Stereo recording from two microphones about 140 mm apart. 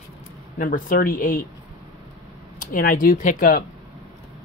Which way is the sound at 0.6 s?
75° left (ahead or behind).